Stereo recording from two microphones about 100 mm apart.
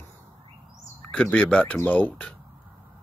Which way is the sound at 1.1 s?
10° left (ahead or behind).